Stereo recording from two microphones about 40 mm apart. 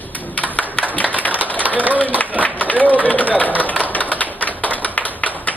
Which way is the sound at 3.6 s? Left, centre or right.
Left.